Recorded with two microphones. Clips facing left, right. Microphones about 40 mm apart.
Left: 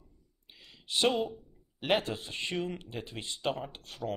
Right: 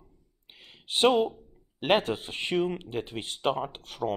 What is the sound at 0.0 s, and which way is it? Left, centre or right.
Speech, right.